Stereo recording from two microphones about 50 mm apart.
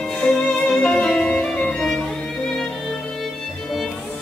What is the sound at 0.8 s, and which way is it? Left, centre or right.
Music, centre.